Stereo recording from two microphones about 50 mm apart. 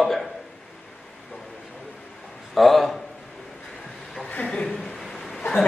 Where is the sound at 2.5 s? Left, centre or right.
Centre.